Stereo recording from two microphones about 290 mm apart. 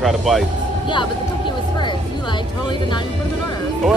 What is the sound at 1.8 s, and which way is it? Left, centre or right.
Music, centre.